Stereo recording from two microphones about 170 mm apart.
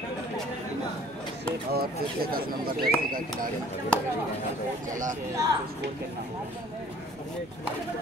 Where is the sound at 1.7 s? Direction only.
60° right (ahead or behind).